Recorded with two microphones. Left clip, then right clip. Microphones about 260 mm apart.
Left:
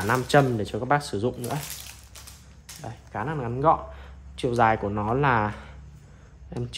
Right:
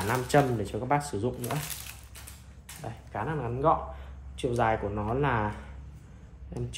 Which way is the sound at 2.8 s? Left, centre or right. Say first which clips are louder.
Left 2 dB; left.